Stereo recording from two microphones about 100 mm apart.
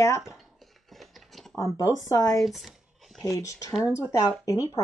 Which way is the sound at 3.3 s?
35° left (ahead or behind).